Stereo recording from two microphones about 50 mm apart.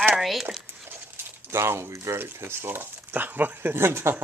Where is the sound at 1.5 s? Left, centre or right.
Right.